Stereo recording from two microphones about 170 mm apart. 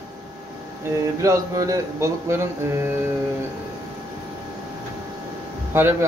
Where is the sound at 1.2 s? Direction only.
20° right (ahead or behind).